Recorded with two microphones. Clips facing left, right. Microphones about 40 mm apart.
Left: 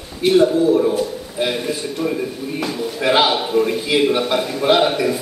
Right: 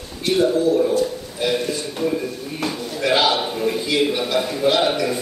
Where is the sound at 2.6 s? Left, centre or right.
Centre.